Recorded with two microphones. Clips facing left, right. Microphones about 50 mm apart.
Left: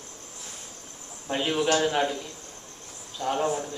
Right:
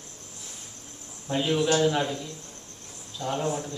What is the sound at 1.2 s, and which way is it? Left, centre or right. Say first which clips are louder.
Speech: even; left.